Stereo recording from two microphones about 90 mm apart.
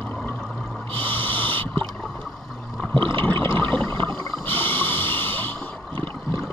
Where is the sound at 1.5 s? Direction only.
75° right (ahead or behind).